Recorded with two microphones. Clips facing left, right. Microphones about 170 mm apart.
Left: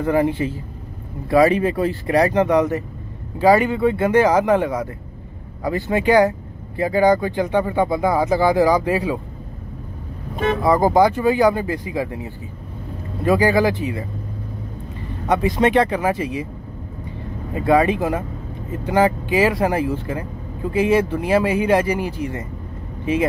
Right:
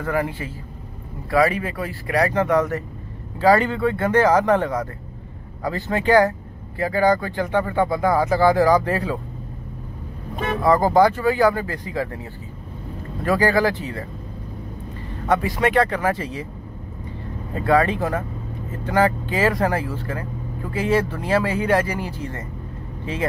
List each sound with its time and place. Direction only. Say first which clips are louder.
0.0 s speech: left 6 dB; 20° left (ahead or behind)
10.6 s speech: even; 15° left (ahead or behind)
15.2 s speech: left 3 dB; 15° left (ahead or behind)
17.6 s speech: left 2 dB; 15° left (ahead or behind)